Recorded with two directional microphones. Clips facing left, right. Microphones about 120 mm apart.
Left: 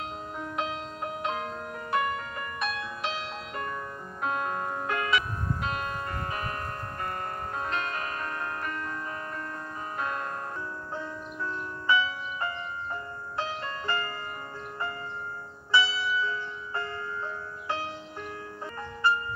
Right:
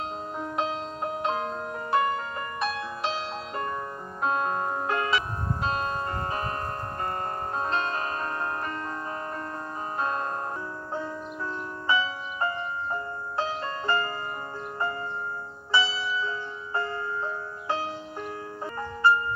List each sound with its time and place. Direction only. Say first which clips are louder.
0.4 s music: right 3 dB; 30° right (ahead or behind)
7.5 s music: right 4 dB; 30° right (ahead or behind)
9.9 s music: right 4 dB; 30° right (ahead or behind)
11.9 s music: even; 30° right (ahead or behind)
15.7 s music: even; 30° right (ahead or behind)